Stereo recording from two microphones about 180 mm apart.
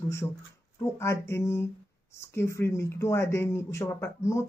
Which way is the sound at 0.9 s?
15° left (ahead or behind).